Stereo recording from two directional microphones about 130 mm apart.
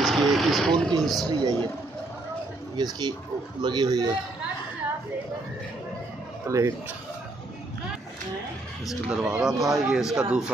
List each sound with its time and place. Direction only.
0.0 s vehicle: centre (ahead or behind)
1.0 s a man's voice: centre (ahead or behind)
2.7 s speech: 35° right (ahead or behind)
6.4 s speech: 25° right (ahead or behind)
9.1 s a man's voice: 5° right (ahead or behind)